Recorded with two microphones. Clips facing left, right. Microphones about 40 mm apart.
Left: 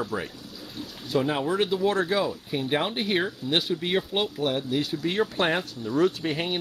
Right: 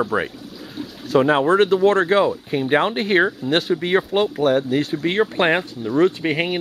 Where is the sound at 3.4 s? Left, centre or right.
Right.